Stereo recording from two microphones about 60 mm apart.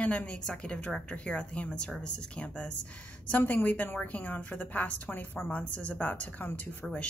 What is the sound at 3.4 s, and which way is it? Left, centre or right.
A woman's voice, left.